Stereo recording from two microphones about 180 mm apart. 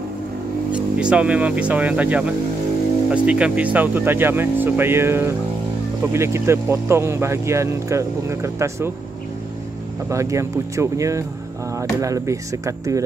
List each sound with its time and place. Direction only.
0.9 s speech: 5° right (ahead or behind)
10.0 s speech: 15° right (ahead or behind)